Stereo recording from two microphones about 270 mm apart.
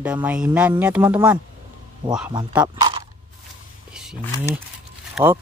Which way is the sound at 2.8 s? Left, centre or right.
Centre.